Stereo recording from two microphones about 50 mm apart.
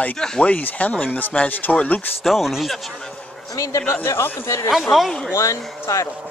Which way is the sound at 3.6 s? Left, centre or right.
Left.